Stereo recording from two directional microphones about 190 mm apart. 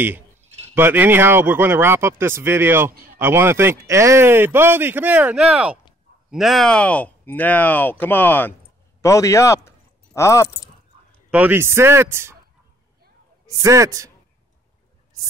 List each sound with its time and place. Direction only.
0.7 s speech: 10° right (ahead or behind); by 10.7 s 15° left (ahead or behind)
11.2 s speech: 10° right (ahead or behind)
13.6 s speech: 15° right (ahead or behind)